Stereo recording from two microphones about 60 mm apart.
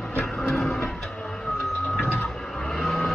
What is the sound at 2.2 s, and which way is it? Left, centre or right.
Vehicle, centre.